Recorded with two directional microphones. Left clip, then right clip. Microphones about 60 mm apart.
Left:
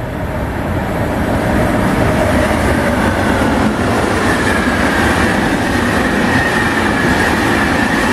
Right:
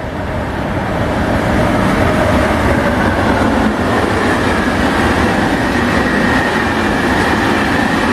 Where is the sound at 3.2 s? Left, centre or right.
Left.